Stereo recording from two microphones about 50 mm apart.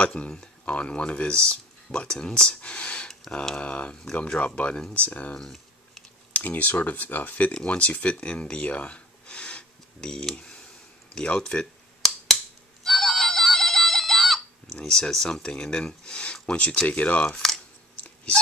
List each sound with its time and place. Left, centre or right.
0.0 s speech: centre
5.4 s a sound: centre
6.3 s speech: left; by 11.6 s centre
12.8 s music: centre
14.8 s speech: centre
17.9 s a sound: left